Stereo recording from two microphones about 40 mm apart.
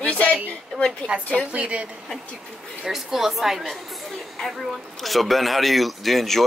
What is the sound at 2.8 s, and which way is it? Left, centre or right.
A woman's voice, centre.